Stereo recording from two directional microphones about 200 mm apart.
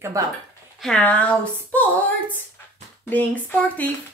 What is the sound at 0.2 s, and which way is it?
Speech, 15° right (ahead or behind).